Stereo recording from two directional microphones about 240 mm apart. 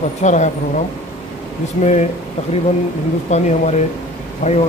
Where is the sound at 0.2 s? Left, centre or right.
Left.